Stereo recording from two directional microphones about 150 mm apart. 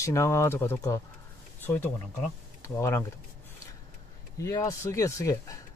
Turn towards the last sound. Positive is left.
turn(degrees=20)  # may be behind; listen again after turning